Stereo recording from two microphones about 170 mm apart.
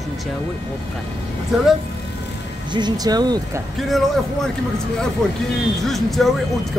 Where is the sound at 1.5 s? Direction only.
Centre (ahead or behind).